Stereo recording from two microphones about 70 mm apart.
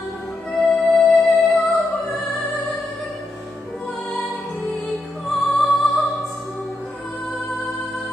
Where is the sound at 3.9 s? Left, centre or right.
Centre.